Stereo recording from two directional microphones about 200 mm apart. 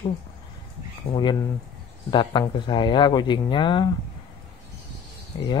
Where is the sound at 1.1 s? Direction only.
20° left (ahead or behind).